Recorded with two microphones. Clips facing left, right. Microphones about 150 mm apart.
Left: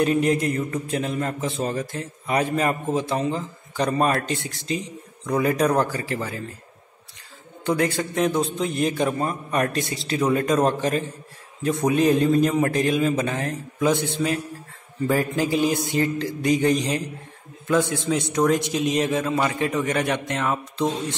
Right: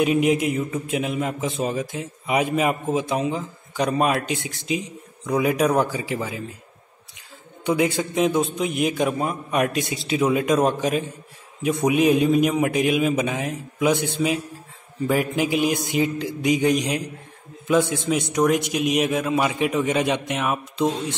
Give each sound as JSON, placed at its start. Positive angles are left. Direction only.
{"t": 0.0, "sound": "a man's voice", "side_deg": -10}
{"t": 7.6, "sound": "a man's voice", "side_deg": -15}
{"t": 14.1, "sound": "a man's voice", "side_deg": -15}
{"t": 18.3, "sound": "a man's voice", "side_deg": -5}